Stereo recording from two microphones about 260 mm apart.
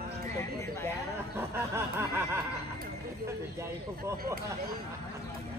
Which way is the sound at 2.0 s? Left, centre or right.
Centre.